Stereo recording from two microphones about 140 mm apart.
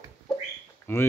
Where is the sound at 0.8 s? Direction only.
20° left (ahead or behind).